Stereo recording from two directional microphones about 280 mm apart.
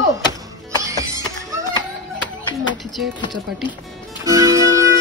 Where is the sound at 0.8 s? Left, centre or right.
Centre.